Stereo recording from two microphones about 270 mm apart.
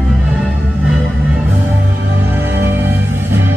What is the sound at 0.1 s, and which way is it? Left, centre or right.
Music, centre.